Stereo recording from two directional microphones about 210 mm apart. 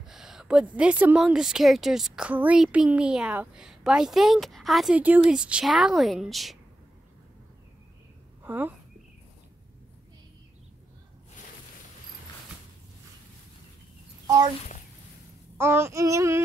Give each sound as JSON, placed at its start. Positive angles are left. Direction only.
{"t": 0.0, "sound": "a woman's voice", "side_deg": 0}
{"t": 8.4, "sound": "speech", "side_deg": -10}
{"t": 14.2, "sound": "a child's voice", "side_deg": -15}
{"t": 15.5, "sound": "child singing", "side_deg": -10}